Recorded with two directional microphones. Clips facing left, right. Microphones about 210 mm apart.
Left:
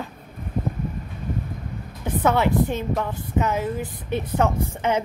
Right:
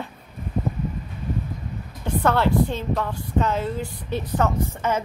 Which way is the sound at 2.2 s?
15° left (ahead or behind).